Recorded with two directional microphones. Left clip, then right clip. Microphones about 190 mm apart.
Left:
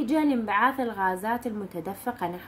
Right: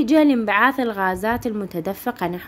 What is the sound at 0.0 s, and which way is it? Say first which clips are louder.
A woman's voice: right 9 dB; 40° right (ahead or behind).